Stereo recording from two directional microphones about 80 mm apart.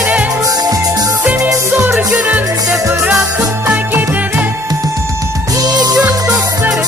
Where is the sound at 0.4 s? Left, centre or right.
Right.